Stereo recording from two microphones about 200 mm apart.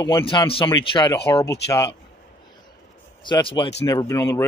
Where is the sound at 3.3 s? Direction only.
25° left (ahead or behind).